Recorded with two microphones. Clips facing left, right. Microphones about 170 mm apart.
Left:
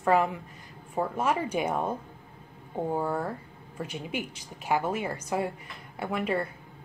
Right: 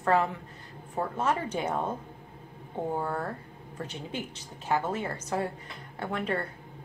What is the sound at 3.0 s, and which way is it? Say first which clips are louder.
A woman's voice: left 2 dB; 10° left (ahead or behind).